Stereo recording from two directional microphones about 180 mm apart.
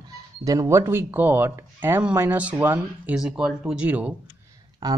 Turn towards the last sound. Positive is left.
turn(degrees=-20)  # may be behind; listen again after turning